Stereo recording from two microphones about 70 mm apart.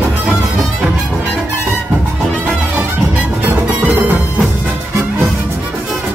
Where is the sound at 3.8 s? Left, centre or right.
Right.